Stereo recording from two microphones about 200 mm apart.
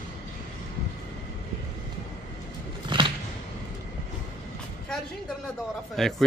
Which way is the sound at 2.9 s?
25° right (ahead or behind).